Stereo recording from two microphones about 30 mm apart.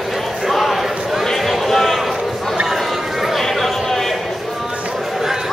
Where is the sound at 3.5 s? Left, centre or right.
Centre.